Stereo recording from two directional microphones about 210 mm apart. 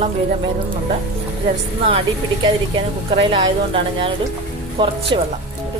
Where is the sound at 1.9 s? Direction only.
25° right (ahead or behind).